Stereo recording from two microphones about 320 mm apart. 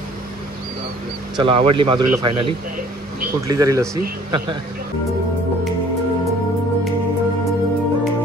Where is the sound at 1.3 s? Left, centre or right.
Centre.